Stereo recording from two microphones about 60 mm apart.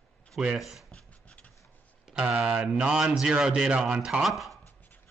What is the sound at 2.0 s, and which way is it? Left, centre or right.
Speech, centre.